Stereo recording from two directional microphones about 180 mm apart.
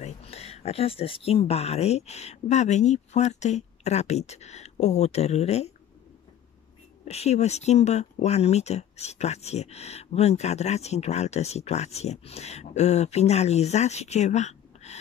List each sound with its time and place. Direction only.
0.0 s speech: 35° left (ahead or behind)
7.1 s speech: 35° left (ahead or behind)